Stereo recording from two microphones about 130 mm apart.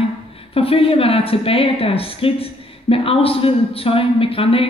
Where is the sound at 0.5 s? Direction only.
45° left (ahead or behind).